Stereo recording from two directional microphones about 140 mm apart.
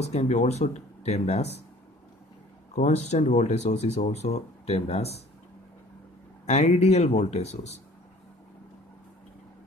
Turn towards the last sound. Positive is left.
turn(degrees=50)  # may be behind; listen again after turning